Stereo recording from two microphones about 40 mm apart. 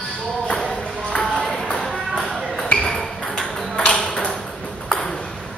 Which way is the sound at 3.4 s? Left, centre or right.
Left.